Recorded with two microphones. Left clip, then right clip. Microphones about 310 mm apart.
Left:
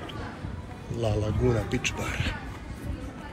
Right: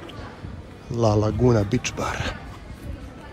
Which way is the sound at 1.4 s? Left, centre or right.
Centre.